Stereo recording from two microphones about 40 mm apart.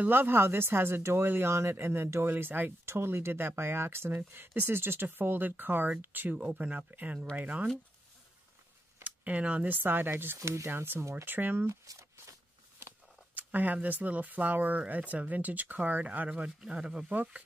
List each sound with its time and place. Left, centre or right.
0.1 s speech: right
2.8 s speech: right
4.6 s speech: right
6.3 s speech: right
9.0 s speech: right
9.8 s speech: right
13.3 s a sound: right
13.8 s speech: right
16.3 s speech: right